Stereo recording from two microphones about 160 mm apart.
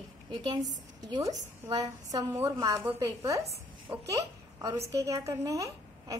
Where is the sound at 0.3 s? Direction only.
25° right (ahead or behind).